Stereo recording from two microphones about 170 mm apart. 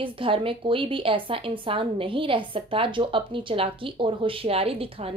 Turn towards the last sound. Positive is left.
turn(degrees=-35)  # may be behind; listen again after turning